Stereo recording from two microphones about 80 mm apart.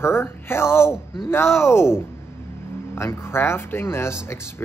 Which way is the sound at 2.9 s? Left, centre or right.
Left.